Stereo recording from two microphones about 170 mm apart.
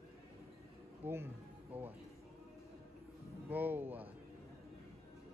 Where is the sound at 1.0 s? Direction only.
15° right (ahead or behind).